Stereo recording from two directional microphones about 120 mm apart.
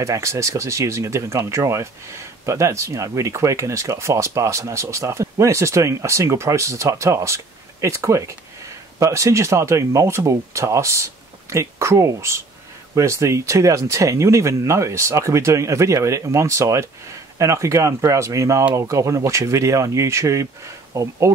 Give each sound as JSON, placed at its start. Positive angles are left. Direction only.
{"t": 0.0, "sound": "speech", "side_deg": -25}